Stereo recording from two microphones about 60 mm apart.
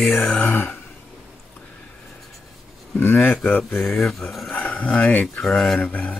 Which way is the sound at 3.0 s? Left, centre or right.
Left.